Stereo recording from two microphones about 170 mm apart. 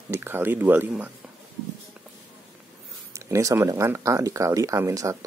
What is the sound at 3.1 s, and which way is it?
Speech, 20° right (ahead or behind).